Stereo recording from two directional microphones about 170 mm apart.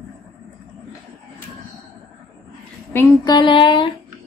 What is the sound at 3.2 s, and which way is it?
Speech, 25° left (ahead or behind).